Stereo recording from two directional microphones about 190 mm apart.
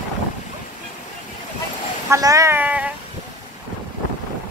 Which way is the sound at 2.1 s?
15° right (ahead or behind).